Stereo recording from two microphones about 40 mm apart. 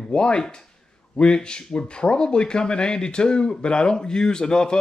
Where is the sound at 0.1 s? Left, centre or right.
Left.